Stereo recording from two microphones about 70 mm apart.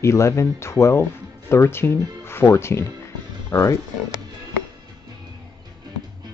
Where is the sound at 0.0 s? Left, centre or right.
Left.